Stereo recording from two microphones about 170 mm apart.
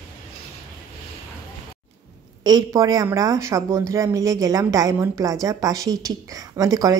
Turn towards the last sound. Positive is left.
turn(degrees=-20)  # may be behind; listen again after turning